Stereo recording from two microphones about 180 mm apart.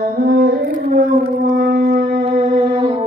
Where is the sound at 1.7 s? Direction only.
55° right (ahead or behind).